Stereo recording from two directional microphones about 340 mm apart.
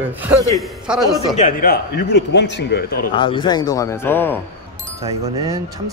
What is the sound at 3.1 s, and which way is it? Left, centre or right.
A man's voice, centre.